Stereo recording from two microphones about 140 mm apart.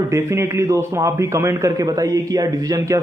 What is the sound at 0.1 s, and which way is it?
A man's voice, 20° right (ahead or behind).